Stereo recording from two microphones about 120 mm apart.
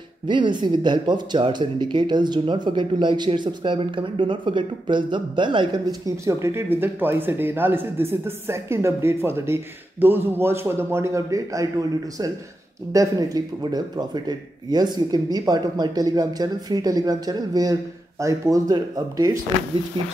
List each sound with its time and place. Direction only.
0.3 s speech: 40° right (ahead or behind)
12.9 s speech: 30° right (ahead or behind)